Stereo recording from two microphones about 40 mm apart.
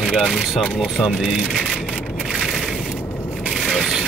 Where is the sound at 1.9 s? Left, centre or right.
Centre.